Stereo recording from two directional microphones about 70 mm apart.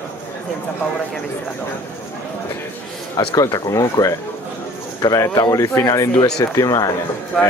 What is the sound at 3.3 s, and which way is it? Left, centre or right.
Speech, left.